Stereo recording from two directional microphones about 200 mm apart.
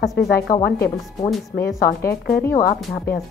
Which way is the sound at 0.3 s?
50° left (ahead or behind).